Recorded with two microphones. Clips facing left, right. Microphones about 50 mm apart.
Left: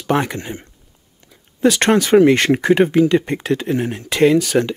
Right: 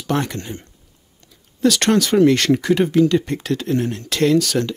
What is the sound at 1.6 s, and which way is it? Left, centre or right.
Speech, left.